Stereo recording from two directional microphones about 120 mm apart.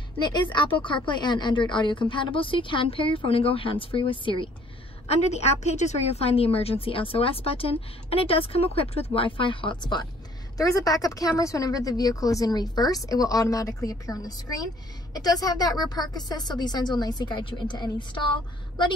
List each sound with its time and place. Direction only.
0.2 s a woman's voice: 40° left (ahead or behind)
5.0 s a woman's voice: 65° left (ahead or behind); by 18.2 s 40° left (ahead or behind)